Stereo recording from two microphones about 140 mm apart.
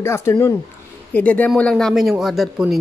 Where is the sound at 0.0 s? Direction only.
20° left (ahead or behind).